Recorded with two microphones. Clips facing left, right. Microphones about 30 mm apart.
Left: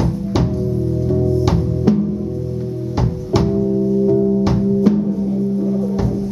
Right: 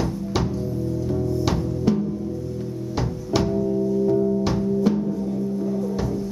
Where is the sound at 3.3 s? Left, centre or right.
Centre.